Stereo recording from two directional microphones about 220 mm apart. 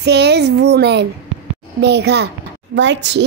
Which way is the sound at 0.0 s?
50° right (ahead or behind).